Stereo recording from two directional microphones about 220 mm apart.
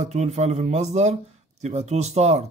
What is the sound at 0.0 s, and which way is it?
Speech, 30° right (ahead or behind).